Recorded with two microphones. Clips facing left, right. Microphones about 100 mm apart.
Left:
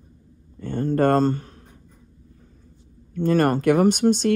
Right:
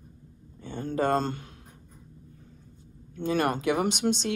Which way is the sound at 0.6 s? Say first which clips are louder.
Left 8 dB; 50° left (ahead or behind).